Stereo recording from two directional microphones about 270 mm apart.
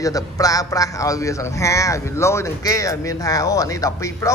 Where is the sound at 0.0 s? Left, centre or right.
Centre.